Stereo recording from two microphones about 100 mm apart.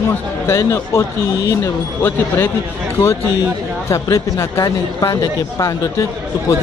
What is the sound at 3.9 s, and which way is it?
Speech, 30° left (ahead or behind).